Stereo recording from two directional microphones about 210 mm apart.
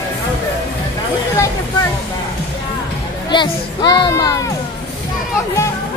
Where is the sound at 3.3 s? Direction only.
20° left (ahead or behind).